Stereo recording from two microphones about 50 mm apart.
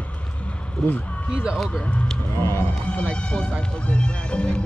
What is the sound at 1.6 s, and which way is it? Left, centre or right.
Music, centre.